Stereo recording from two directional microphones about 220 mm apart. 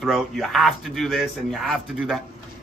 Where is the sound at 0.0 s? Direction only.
Centre (ahead or behind).